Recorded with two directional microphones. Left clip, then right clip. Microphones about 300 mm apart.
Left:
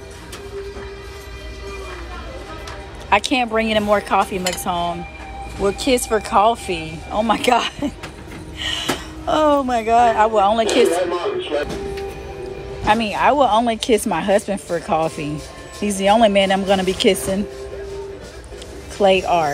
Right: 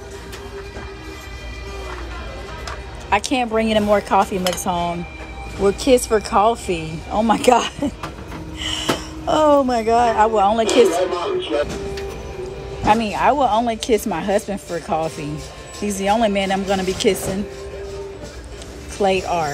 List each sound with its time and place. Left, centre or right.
3.1 s a woman's voice: centre
10.7 s speech: left
12.8 s speech: centre
18.9 s speech: centre